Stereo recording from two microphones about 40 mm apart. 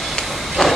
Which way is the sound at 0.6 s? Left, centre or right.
Centre.